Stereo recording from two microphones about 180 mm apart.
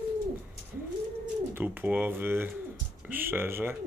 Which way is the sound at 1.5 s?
10° right (ahead or behind).